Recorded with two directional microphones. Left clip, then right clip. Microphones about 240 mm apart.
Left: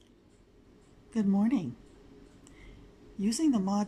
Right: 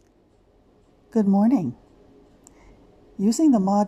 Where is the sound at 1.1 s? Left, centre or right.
Centre.